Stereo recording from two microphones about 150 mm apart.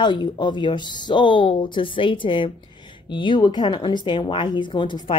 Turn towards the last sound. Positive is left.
turn(degrees=30)  # may be behind; listen again after turning